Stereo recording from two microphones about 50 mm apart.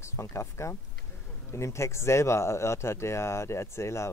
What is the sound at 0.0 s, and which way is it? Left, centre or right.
Speech, left.